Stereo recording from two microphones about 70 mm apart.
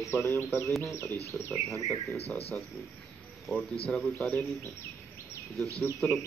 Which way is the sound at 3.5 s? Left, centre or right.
Right.